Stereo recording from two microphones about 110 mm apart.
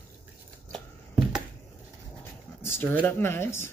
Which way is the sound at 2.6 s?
20° left (ahead or behind).